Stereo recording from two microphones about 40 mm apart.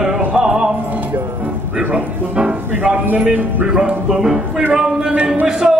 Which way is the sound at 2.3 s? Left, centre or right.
Right.